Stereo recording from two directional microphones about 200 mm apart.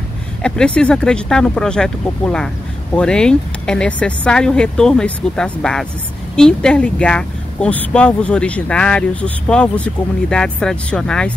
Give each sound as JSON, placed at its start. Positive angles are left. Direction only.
{"t": 0.4, "sound": "speech", "side_deg": 5}